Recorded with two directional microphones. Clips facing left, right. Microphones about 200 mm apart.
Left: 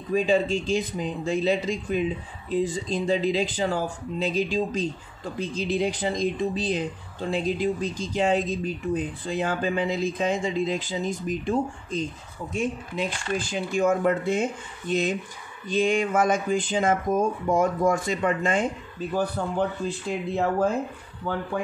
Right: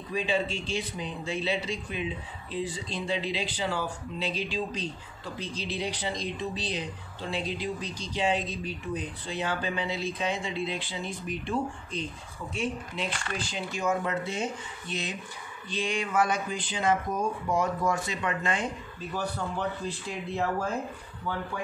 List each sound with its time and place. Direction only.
0.1 s speech: 45° left (ahead or behind)